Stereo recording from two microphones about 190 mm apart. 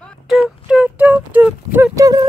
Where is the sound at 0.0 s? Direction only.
Centre (ahead or behind).